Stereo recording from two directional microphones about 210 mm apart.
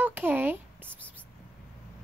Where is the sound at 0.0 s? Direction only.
10° right (ahead or behind).